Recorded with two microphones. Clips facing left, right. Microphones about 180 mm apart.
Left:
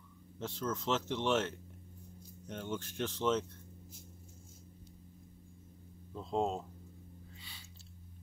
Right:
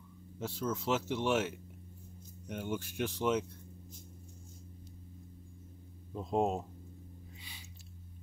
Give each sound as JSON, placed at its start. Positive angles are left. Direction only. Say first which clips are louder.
{"t": 0.4, "sound": "speech", "louder": "right 2 dB", "side_deg": -10}
{"t": 6.1, "sound": "speech", "louder": "right 3 dB", "side_deg": -15}